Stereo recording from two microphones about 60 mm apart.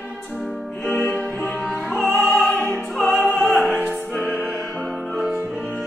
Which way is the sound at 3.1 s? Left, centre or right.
Centre.